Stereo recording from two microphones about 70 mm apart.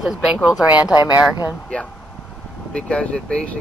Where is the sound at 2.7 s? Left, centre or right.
Centre.